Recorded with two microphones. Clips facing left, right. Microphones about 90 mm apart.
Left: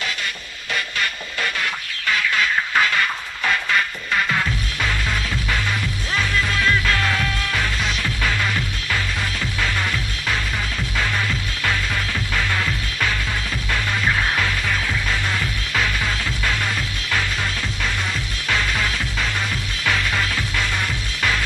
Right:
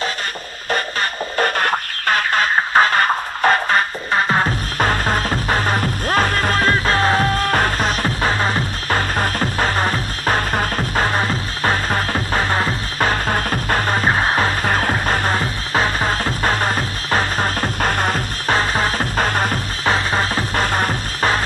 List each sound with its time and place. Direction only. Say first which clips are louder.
0.7 s music: right 4 dB; 40° right (ahead or behind)